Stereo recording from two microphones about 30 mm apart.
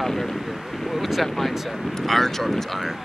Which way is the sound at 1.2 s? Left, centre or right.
Centre.